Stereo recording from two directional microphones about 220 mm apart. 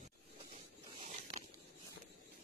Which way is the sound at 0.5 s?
30° right (ahead or behind).